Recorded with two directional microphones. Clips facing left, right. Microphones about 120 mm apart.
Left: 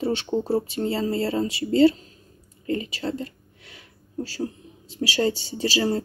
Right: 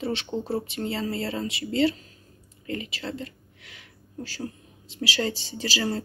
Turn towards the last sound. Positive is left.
turn(degrees=30)  # may be behind; listen again after turning